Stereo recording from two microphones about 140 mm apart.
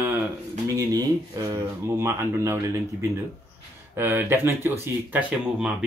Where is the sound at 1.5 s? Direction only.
20° right (ahead or behind).